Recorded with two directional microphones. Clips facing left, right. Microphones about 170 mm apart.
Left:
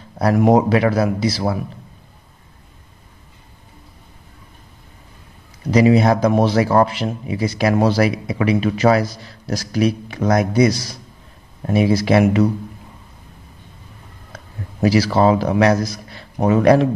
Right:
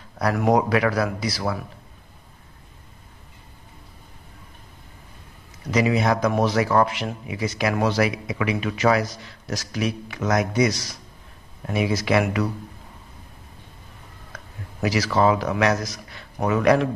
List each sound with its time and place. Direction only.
0.2 s a man's voice: 30° left (ahead or behind)
5.7 s speech: 35° left (ahead or behind)
14.3 s speech: 30° left (ahead or behind)